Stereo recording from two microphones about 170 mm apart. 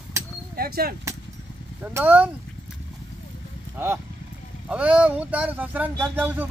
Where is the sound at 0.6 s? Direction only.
65° right (ahead or behind).